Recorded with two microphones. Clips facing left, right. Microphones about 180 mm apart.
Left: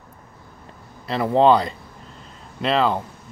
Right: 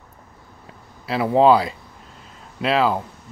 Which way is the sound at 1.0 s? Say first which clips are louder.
Right 1 dB; 5° right (ahead or behind).